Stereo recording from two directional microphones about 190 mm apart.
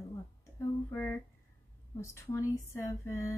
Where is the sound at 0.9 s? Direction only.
10° left (ahead or behind).